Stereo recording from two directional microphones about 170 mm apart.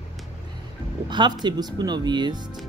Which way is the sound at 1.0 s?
25° right (ahead or behind).